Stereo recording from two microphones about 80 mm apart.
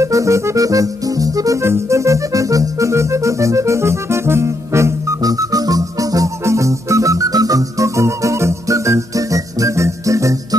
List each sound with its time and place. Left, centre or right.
0.0 s music: right
5.2 s music: right